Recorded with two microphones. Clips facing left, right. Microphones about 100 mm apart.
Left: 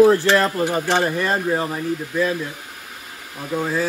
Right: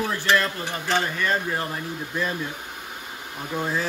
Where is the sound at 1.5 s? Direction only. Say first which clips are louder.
Left 6 dB; 15° left (ahead or behind).